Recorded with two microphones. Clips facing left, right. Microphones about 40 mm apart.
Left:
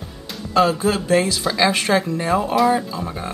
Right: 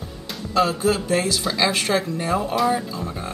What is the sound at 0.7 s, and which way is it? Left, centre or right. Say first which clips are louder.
Speech: left 2 dB; centre.